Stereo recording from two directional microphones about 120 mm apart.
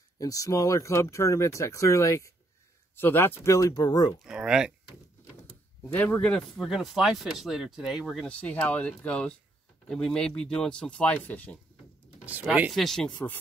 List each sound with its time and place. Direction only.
0.2 s speech: 30° left (ahead or behind)
4.2 s speech: 5° right (ahead or behind)
5.9 s speech: 15° left (ahead or behind)
6.6 s speech: centre (ahead or behind)
12.4 s speech: 10° right (ahead or behind)
12.7 s speech: 5° left (ahead or behind)